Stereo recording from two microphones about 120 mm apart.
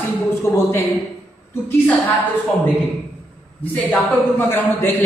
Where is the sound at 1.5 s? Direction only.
20° left (ahead or behind).